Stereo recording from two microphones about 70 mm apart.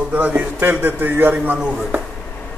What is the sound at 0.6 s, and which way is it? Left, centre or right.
A man's voice, right.